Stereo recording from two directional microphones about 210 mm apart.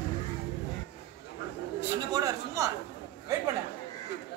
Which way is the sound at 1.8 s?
15° right (ahead or behind).